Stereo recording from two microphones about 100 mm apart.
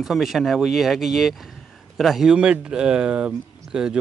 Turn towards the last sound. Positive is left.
turn(degrees=-10)  # may be behind; listen again after turning